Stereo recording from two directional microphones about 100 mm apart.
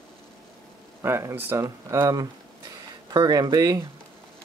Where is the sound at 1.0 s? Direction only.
25° right (ahead or behind).